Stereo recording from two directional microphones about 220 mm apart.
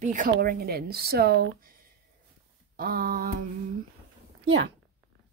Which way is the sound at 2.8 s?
40° right (ahead or behind).